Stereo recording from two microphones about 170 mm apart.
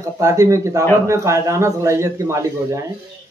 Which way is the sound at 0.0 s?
20° right (ahead or behind).